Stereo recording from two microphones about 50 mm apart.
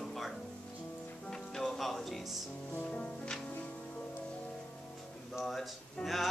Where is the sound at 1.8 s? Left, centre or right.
Centre.